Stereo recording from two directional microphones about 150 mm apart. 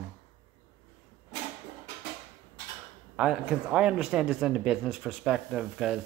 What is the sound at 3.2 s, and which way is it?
Speech, 5° right (ahead or behind).